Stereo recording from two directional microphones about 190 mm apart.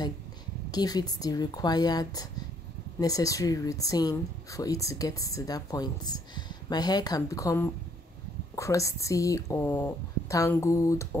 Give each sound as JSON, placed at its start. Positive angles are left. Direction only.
{"t": 0.7, "sound": "speech", "side_deg": 20}